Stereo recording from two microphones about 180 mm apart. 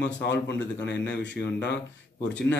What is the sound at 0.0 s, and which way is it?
Speech, 75° left (ahead or behind).